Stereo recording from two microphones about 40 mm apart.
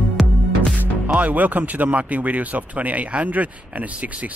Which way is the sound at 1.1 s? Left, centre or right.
Right.